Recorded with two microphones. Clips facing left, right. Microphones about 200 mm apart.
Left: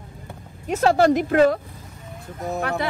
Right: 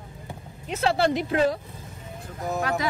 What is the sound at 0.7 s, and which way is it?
Speech, 45° left (ahead or behind).